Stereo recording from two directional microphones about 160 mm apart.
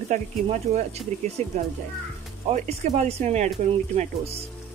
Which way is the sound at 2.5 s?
45° right (ahead or behind).